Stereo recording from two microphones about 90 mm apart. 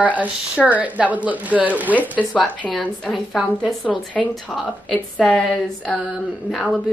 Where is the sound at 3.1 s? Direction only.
5° right (ahead or behind).